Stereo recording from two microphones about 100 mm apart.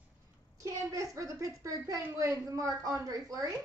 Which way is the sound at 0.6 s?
35° right (ahead or behind).